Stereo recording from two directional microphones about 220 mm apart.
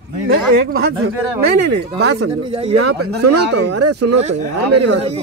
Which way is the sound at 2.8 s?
90° right.